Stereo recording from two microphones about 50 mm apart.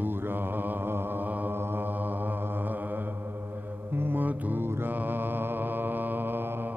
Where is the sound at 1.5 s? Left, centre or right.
Right.